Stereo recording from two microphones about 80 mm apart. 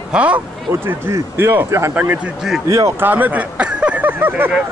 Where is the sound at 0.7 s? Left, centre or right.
Right.